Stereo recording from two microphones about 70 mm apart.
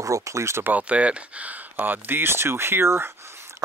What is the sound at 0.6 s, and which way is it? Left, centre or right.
Speech, right.